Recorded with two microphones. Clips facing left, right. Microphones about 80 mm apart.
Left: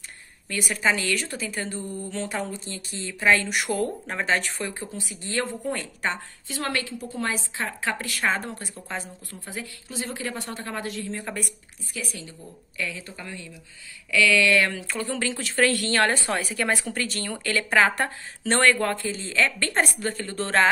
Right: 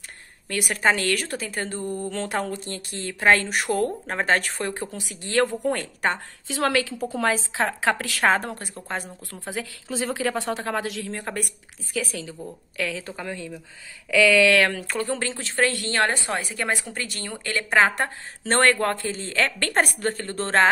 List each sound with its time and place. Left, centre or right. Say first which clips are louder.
0.5 s a woman's voice: right 2 dB; right
5.2 s speech: right 7 dB; right
6.4 s a woman's voice: right 6 dB; right
8.2 s a woman's voice: right 4 dB; right
8.7 s a woman's voice: right 3 dB; right
9.3 s a woman's voice: right 5 dB; right
12.7 s a woman's voice: right 4 dB; right
14.5 s a woman's voice: right 2 dB; right
15.3 s a woman's voice: left 3 dB; right
18.5 s a woman's voice: right 1 dB; right